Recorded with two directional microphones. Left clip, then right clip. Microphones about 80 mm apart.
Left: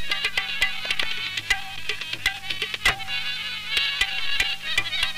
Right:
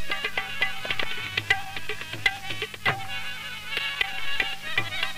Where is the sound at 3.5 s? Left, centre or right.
Right.